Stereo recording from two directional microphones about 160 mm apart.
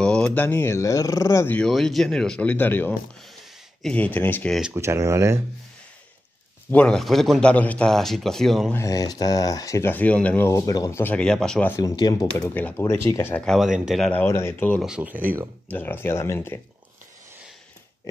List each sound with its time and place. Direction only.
0.0 s speech: 5° left (ahead or behind)
1.7 s speech: centre (ahead or behind)
4.7 s speech: 15° right (ahead or behind)
6.7 s speech: 5° left (ahead or behind)
8.7 s speech: 20° left (ahead or behind); by 11.7 s 5° left (ahead or behind)
11.7 s speech: 25° left (ahead or behind)
12.5 s speech: 10° left (ahead or behind)
14.2 s speech: 15° left (ahead or behind)
14.8 s speech: 5° right (ahead or behind)
15.7 s speech: 10° left (ahead or behind)